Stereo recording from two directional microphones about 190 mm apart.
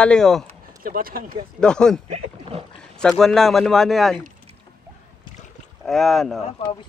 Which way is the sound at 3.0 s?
Centre (ahead or behind).